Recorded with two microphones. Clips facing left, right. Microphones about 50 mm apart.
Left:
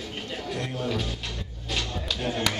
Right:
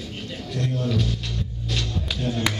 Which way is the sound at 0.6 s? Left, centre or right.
Centre.